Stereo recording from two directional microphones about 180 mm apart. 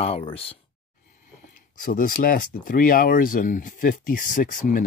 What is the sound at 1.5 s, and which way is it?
Speech, 50° left (ahead or behind).